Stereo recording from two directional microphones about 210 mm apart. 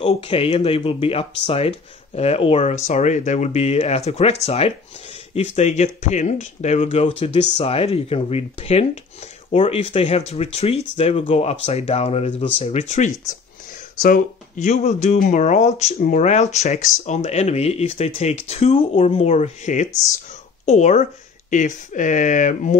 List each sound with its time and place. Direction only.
0.0 s speech: 25° left (ahead or behind)